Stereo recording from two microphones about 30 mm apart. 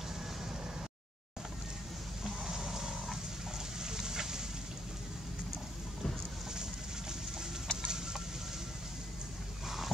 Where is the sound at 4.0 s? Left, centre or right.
Centre.